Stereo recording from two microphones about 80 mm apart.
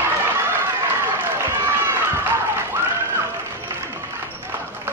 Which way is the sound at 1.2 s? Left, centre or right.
Right.